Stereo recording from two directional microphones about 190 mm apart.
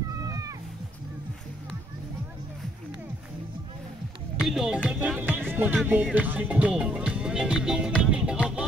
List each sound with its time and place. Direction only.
0.2 s cat: 20° right (ahead or behind)
4.5 s speech: 5° right (ahead or behind)
8.4 s music: 5° right (ahead or behind)